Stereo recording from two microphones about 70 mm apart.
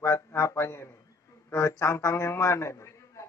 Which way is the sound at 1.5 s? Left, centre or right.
Left.